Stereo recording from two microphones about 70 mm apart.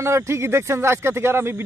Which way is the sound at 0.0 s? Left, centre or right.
Right.